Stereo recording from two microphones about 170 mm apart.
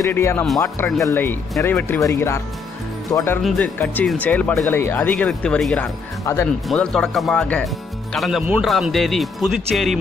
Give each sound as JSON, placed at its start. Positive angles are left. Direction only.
{"t": 0.0, "sound": "speech", "side_deg": 15}
{"t": 3.4, "sound": "speech", "side_deg": 5}
{"t": 6.2, "sound": "speech", "side_deg": 15}
{"t": 6.7, "sound": "speech", "side_deg": 5}